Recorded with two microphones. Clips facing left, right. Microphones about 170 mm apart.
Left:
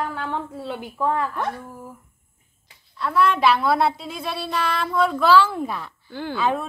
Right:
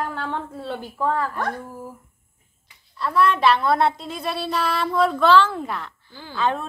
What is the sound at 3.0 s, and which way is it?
A woman's voice, centre (ahead or behind).